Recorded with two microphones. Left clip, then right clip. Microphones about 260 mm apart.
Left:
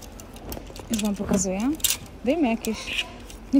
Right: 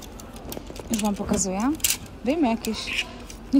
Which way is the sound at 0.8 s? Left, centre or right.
Centre.